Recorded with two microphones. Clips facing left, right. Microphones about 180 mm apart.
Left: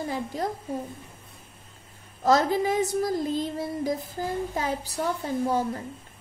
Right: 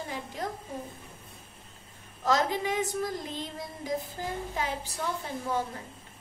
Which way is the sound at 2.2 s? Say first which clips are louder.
Left 5 dB; 40° left (ahead or behind).